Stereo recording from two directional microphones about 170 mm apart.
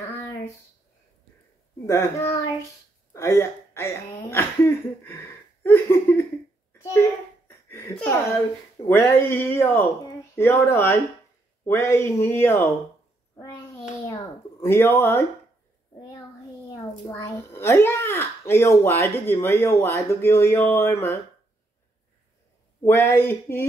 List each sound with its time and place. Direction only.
1.9 s a child's voice: 15° left (ahead or behind)
6.8 s a sound: 15° left (ahead or behind)
8.8 s a child's voice: 15° left (ahead or behind)
13.4 s a sound: 15° left (ahead or behind)
17.1 s a child's voice: 15° left (ahead or behind)
22.8 s a child's voice: 15° left (ahead or behind)